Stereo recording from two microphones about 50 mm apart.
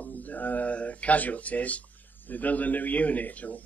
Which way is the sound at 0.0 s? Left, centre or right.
Left.